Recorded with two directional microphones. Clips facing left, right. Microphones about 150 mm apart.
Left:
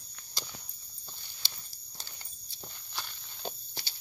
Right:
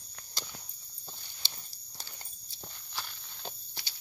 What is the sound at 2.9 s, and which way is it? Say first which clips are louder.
Walk: right 1 dB; centre (ahead or behind).